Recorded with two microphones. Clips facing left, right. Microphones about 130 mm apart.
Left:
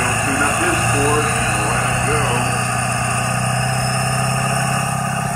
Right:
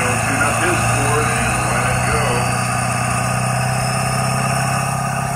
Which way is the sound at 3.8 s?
5° right (ahead or behind).